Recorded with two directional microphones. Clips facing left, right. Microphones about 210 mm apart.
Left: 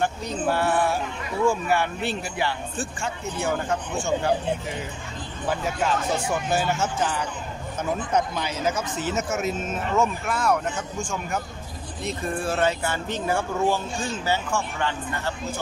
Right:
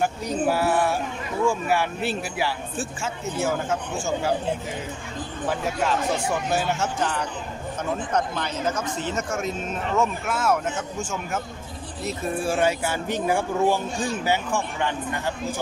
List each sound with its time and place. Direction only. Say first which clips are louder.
0.0 s speech: right 2 dB; 5° right (ahead or behind)
5.5 s speech: even; centre (ahead or behind)
12.0 s speech: right 1 dB; 5° right (ahead or behind)